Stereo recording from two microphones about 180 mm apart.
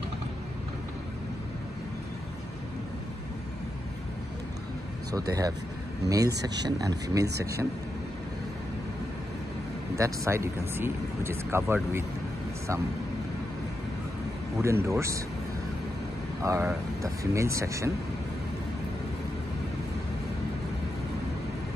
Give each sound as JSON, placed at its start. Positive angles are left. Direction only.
{"t": 6.0, "sound": "speech", "side_deg": -20}
{"t": 7.2, "sound": "speech", "side_deg": -65}
{"t": 9.9, "sound": "speech", "side_deg": -15}
{"t": 14.6, "sound": "speech", "side_deg": -15}
{"t": 16.4, "sound": "speech", "side_deg": -15}